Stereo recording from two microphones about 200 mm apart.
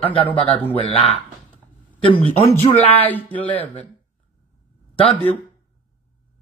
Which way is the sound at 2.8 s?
10° left (ahead or behind).